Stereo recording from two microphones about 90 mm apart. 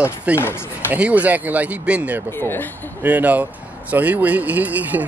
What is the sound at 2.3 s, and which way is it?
Speech, 25° left (ahead or behind).